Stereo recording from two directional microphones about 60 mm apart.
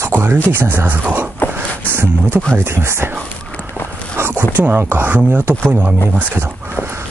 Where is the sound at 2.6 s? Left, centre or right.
Right.